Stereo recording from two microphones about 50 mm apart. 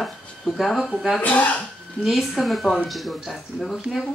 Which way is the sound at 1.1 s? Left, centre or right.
Left.